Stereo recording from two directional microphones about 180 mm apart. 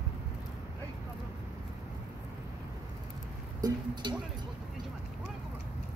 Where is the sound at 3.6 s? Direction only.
25° right (ahead or behind).